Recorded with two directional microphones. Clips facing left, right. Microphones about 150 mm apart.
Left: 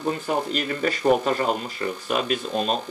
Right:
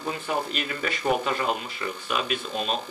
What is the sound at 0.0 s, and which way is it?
Speech, 35° left (ahead or behind).